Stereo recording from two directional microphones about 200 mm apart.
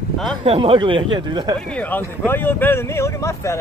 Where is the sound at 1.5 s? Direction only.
5° left (ahead or behind).